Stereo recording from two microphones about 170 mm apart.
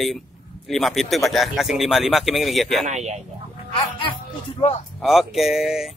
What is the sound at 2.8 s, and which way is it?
Speech, 40° right (ahead or behind).